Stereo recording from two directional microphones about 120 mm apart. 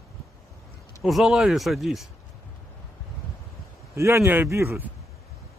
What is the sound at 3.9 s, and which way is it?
Speech, 25° right (ahead or behind).